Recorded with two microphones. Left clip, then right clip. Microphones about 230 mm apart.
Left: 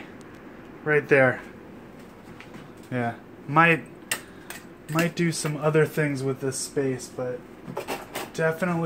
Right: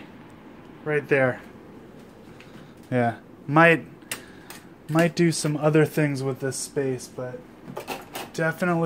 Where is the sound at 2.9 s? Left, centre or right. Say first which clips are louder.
Right 5 dB; right.